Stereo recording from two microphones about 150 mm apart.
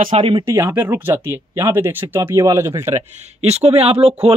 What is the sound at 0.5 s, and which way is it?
Speech, 15° right (ahead or behind).